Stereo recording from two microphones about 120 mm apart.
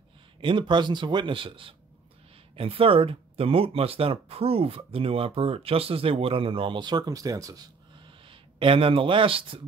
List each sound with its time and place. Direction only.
0.4 s speech: 45° right (ahead or behind)
8.3 s speech: 45° right (ahead or behind)